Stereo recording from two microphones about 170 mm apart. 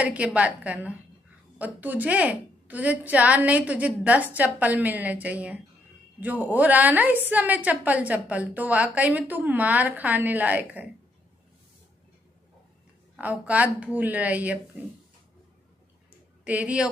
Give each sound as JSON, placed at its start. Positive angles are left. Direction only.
{"t": 0.0, "sound": "a woman's voice", "side_deg": -10}
{"t": 13.1, "sound": "a woman's voice", "side_deg": -10}
{"t": 16.4, "sound": "a woman's voice", "side_deg": -10}